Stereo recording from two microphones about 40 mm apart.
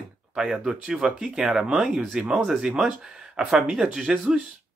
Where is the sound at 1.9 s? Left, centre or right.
Centre.